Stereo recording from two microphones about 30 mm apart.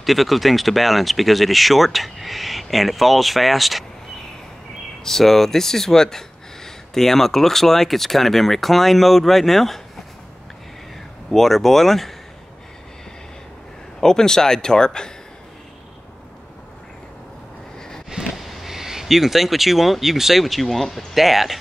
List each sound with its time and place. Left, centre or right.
0.0 s speech: centre
5.0 s speech: centre
11.2 s speech: centre
14.0 s speech: left
18.1 s vehicle: centre
18.5 s speech: centre